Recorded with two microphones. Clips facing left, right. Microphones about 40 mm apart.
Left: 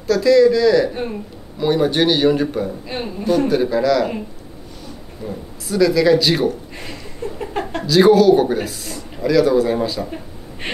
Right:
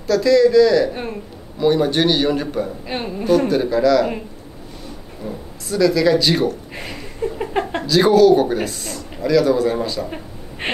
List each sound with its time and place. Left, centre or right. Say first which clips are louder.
0.0 s speech: left 1 dB; centre
2.9 s speech: right 3 dB; centre
5.2 s speech: left 1 dB; centre
6.7 s a sound: right 2 dB; centre
7.8 s speech: left 1 dB; centre
10.6 s a sound: right 3 dB; right